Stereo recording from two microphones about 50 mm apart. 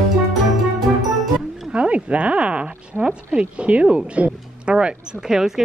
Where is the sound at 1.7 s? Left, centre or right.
Right.